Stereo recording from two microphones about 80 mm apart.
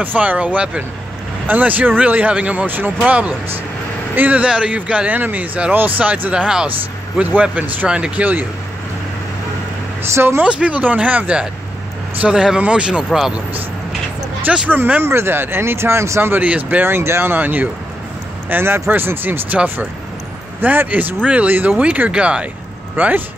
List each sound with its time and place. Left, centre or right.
0.0 s a man's voice: right
10.1 s speech: right
10.4 s a man's voice: centre
14.7 s speech: right